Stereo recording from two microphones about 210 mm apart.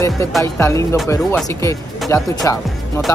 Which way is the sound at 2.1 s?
15° left (ahead or behind).